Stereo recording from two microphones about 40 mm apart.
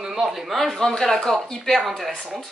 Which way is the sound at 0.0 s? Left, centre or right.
Centre.